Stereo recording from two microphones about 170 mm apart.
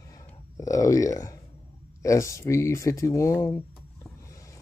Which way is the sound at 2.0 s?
20° left (ahead or behind).